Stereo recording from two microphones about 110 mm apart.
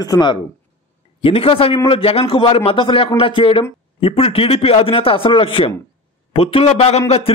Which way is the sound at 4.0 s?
65° left (ahead or behind).